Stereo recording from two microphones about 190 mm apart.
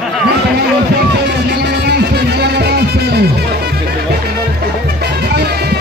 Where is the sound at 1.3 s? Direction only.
60° right (ahead or behind).